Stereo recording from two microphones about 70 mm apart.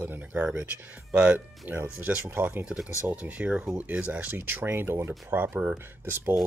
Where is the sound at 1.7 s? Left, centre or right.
Right.